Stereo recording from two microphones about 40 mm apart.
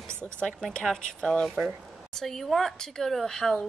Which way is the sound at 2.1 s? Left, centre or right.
Centre.